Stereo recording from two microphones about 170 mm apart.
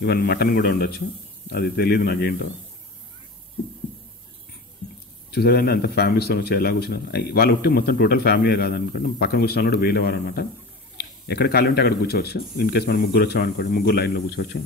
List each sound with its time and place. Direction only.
0.0 s speech: 70° left (ahead or behind)
5.3 s speech: 65° left (ahead or behind)